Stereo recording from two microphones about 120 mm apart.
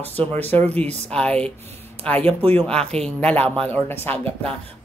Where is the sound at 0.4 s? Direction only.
15° left (ahead or behind).